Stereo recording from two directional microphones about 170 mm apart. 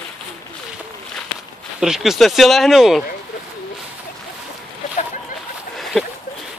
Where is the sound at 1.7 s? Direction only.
5° right (ahead or behind).